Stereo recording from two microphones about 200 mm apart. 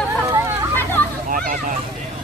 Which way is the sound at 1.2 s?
40° right (ahead or behind).